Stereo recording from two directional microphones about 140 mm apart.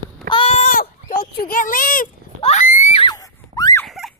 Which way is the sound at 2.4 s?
65° left (ahead or behind).